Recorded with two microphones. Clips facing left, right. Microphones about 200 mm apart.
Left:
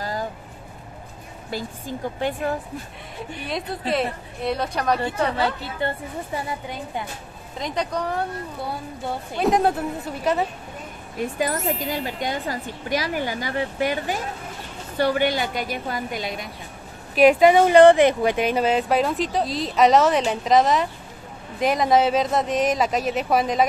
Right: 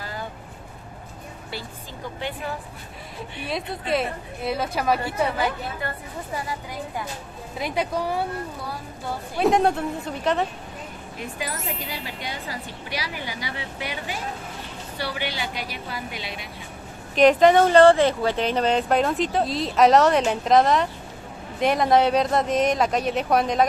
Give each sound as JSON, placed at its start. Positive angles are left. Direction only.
{"t": 1.5, "sound": "speech", "side_deg": 45}
{"t": 3.2, "sound": "speech", "side_deg": 0}
{"t": 5.8, "sound": "a woman's voice", "side_deg": 25}
{"t": 7.5, "sound": "speech", "side_deg": -10}
{"t": 9.4, "sound": "speech", "side_deg": 0}
{"t": 11.5, "sound": "speech", "side_deg": 0}
{"t": 11.8, "sound": "speech", "side_deg": 45}
{"t": 17.1, "sound": "speech", "side_deg": 10}